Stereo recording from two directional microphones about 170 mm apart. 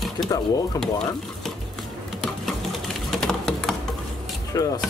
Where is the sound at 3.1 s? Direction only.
5° left (ahead or behind).